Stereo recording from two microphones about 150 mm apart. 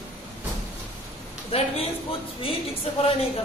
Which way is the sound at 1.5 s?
40° left (ahead or behind).